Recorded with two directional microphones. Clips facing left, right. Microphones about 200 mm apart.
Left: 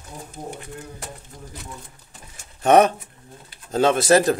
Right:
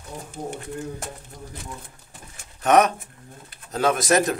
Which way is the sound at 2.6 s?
30° left (ahead or behind).